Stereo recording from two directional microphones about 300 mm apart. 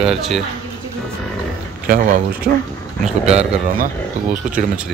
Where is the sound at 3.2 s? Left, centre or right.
Right.